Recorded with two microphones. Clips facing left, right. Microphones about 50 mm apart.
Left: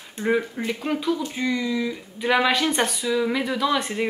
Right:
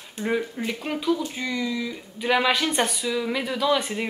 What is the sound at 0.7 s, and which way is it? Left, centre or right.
A woman's voice, centre.